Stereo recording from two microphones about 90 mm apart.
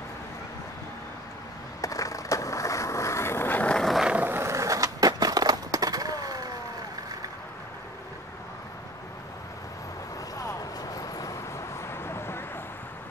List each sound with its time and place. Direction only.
1.8 s skateboard: 40° left (ahead or behind); by 3.7 s 20° left (ahead or behind)
3.7 s vehicle: centre (ahead or behind)
4.1 s skateboard: 20° right (ahead or behind); by 6.4 s 45° right (ahead or behind)
10.3 s vehicle: 40° left (ahead or behind)